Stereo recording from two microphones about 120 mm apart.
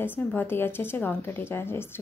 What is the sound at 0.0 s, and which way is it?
Speech, 15° left (ahead or behind).